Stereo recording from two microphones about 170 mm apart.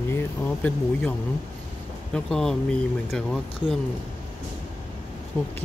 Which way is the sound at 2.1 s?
5° left (ahead or behind).